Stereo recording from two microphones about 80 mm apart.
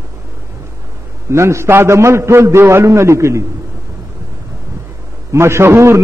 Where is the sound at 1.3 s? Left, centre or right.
Right.